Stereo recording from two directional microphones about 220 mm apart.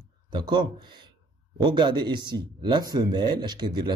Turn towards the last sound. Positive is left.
turn(degrees=-20)  # may be behind; listen again after turning